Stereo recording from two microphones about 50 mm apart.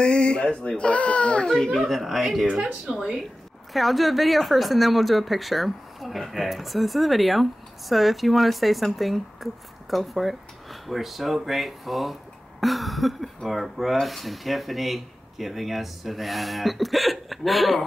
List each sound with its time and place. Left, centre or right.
0.0 s speech: centre
1.5 s speech: centre
1.8 s speech: centre
2.4 s speech: centre
3.7 s speech: centre